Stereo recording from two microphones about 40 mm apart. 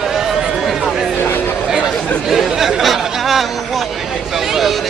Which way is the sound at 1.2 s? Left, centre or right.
Left.